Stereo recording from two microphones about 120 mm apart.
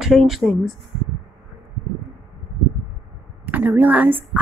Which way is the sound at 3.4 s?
15° right (ahead or behind).